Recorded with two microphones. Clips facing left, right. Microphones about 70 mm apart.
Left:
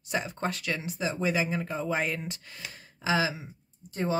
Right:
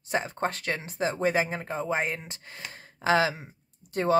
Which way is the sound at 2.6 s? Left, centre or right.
Right.